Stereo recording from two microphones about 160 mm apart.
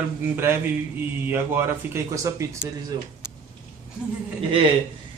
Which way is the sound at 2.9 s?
25° right (ahead or behind).